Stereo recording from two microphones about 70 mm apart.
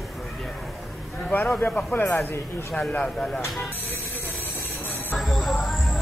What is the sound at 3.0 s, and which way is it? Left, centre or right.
Speech, centre.